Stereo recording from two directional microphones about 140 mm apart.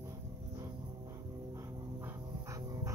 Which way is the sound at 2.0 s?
25° right (ahead or behind).